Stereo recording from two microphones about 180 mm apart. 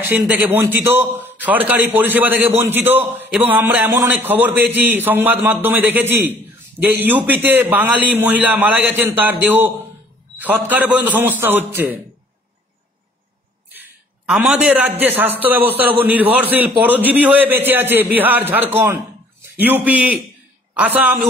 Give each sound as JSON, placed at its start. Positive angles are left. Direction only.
{"t": 0.0, "sound": "a man's voice", "side_deg": -10}
{"t": 13.7, "sound": "a man's voice", "side_deg": -10}